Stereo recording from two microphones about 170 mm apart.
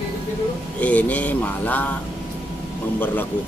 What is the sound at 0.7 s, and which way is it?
Speech, 10° left (ahead or behind).